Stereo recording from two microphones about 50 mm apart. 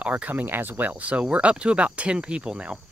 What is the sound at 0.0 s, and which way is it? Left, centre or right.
Speech, right.